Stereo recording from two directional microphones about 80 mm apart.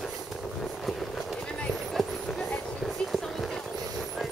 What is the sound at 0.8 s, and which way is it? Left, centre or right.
Vehicle, centre.